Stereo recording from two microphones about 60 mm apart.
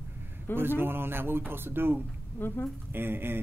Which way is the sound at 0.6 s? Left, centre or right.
Right.